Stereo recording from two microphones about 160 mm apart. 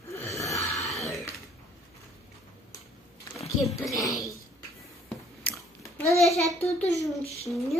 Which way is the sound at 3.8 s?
20° left (ahead or behind).